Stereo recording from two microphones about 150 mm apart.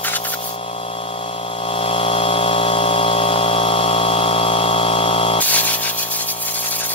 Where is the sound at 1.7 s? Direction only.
40° left (ahead or behind).